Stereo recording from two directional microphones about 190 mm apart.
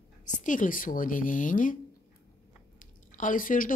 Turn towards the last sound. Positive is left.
turn(degrees=45)  # may be behind; listen again after turning